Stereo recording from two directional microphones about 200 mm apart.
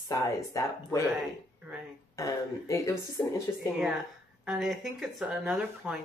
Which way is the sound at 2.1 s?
15° left (ahead or behind).